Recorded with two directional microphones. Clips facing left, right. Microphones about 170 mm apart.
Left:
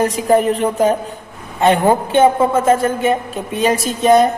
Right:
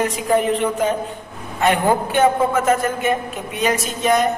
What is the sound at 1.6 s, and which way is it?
A woman's voice, 25° left (ahead or behind).